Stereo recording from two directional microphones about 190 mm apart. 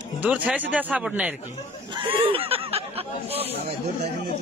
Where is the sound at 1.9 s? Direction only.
25° right (ahead or behind).